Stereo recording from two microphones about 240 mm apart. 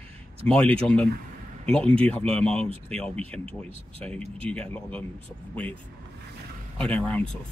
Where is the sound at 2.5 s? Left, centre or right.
Right.